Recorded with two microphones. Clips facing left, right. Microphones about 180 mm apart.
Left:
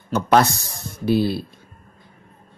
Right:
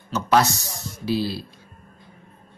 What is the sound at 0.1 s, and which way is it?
Speech, 55° left (ahead or behind).